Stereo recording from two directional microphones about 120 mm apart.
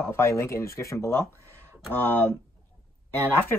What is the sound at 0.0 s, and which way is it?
Speech, 20° left (ahead or behind).